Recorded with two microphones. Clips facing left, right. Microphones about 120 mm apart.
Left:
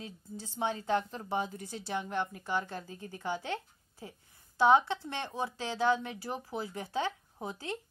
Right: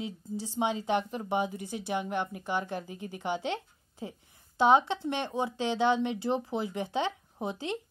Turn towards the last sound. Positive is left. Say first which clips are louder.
# right 5 dB
turn(degrees=-20)  # may be behind; listen again after turning